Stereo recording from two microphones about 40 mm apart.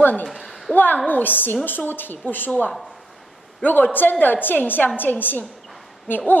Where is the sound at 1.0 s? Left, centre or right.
Left.